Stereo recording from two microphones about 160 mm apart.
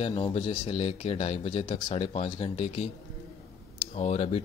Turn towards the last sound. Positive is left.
turn(degrees=40)  # may be behind; listen again after turning